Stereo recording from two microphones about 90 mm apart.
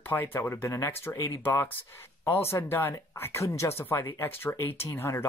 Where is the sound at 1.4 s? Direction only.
25° left (ahead or behind).